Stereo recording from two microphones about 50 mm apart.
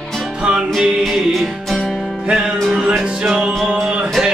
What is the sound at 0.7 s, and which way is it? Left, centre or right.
Music, centre.